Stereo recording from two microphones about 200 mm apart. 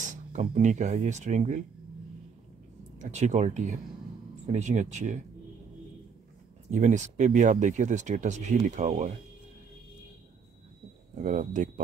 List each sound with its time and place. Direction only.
0.0 s speech: 40° right (ahead or behind)
3.0 s speech: 35° right (ahead or behind)
6.7 s speech: 35° right (ahead or behind)
11.1 s speech: 40° right (ahead or behind)